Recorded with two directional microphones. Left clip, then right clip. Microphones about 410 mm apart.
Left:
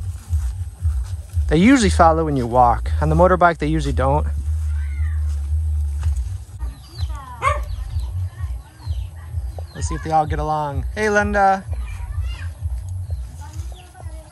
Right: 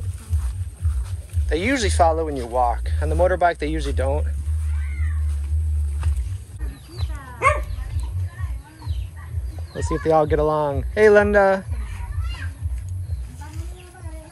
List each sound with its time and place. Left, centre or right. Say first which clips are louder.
1.5 s speech: left 6 dB; centre
9.8 s speech: right 1 dB; centre